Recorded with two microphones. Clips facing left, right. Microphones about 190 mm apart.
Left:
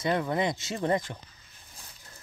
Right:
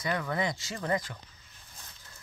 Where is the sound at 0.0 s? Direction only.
25° left (ahead or behind).